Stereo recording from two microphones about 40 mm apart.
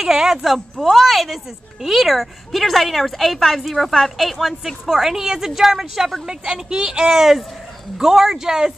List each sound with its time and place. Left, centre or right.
0.0 s speech: centre
0.8 s a woman's voice: centre
6.2 s speech: right